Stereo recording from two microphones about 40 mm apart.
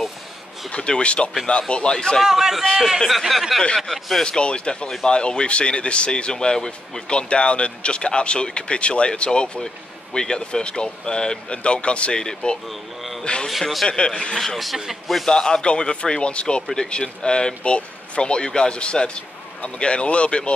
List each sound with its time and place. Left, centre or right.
0.7 s speech: left
2.2 s a man's voice: centre
4.2 s speech: left
12.6 s speech: centre
13.2 s a man's voice: left
13.5 s speech: centre
13.8 s speech: left
14.3 s speech: centre
15.2 s speech: centre